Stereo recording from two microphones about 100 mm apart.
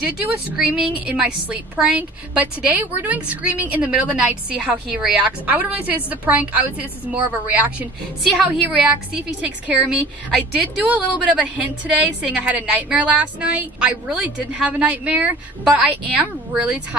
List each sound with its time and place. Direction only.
0.5 s a woman's voice: 15° right (ahead or behind)
8.2 s a woman's voice: centre (ahead or behind)
8.5 s a woman's voice: 15° right (ahead or behind)